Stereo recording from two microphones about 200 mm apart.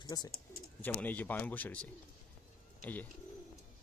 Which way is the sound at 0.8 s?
10° left (ahead or behind).